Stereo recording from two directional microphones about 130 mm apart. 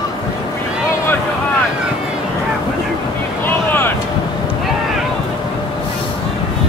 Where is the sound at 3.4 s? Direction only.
15° left (ahead or behind).